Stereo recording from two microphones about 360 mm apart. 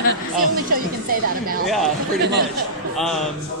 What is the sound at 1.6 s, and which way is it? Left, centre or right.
Speech, centre.